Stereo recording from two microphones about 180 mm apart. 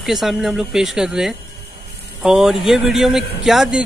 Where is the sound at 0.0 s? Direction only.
Centre (ahead or behind).